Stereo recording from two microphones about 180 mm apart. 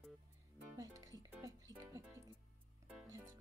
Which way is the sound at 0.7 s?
15° right (ahead or behind).